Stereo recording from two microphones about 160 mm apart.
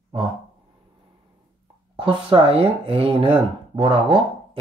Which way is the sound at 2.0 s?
30° right (ahead or behind).